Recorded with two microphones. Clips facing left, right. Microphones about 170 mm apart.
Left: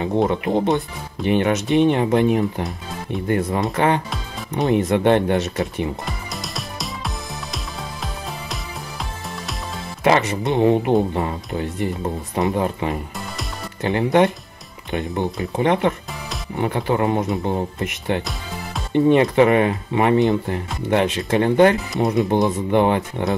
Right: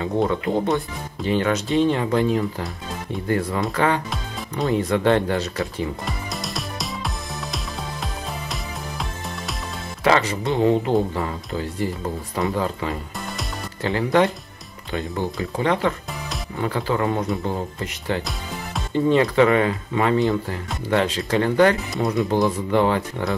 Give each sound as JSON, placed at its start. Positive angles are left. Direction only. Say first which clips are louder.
{"t": 0.0, "sound": "speech", "louder": "left 2 dB", "side_deg": 20}
{"t": 6.0, "sound": "music", "louder": "right 1 dB", "side_deg": 0}
{"t": 10.0, "sound": "speech", "louder": "left 2 dB", "side_deg": 25}